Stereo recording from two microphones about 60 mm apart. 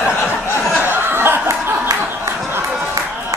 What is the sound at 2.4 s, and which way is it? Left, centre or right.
Music, right.